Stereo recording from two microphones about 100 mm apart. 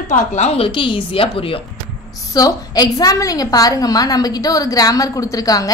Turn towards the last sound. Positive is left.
turn(degrees=35)  # may be behind; listen again after turning